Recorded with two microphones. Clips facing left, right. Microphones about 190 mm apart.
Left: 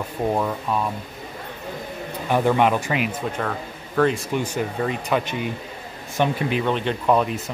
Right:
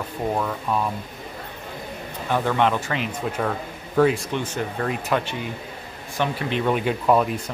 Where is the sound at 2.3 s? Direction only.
15° left (ahead or behind).